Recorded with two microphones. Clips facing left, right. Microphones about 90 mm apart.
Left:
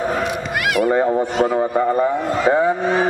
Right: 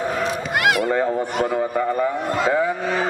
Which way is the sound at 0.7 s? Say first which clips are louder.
Left 4 dB; 20° left (ahead or behind).